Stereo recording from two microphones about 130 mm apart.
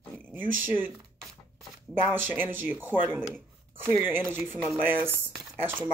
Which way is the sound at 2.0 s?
15° right (ahead or behind).